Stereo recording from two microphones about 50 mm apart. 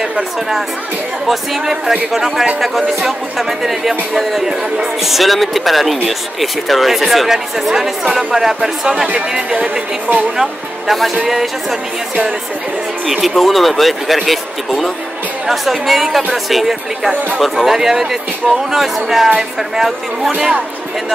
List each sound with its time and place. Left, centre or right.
0.1 s speech: centre
10.3 s speech: centre
13.0 s speech: centre